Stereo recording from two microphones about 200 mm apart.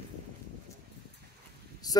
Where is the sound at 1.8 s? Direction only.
20° left (ahead or behind).